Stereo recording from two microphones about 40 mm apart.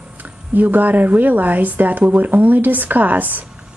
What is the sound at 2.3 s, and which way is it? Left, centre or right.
Speech, right.